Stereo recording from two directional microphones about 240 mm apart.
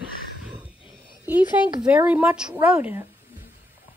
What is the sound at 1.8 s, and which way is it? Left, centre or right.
Speech, centre.